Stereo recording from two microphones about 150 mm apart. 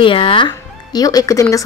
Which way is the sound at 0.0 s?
35° left (ahead or behind).